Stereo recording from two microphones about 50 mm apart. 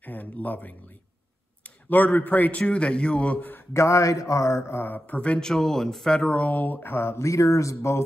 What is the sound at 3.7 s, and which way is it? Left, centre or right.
Speech, left.